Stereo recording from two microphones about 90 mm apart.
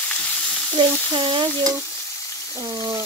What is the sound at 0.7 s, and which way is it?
Frying, 70° right (ahead or behind).